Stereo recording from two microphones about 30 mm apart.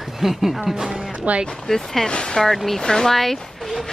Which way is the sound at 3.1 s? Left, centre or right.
Centre.